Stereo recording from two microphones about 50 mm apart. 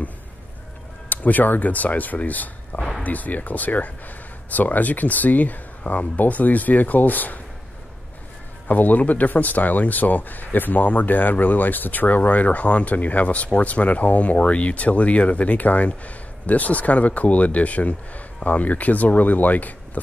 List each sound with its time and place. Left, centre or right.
1.0 s speech: left
8.6 s speech: left